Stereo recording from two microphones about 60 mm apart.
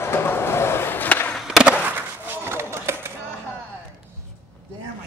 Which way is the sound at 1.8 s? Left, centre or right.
Right.